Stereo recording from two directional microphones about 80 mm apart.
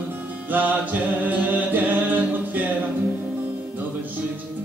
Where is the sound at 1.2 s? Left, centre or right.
Right.